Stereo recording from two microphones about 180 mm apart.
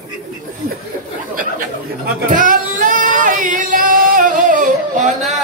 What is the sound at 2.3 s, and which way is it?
Singing, 45° right (ahead or behind).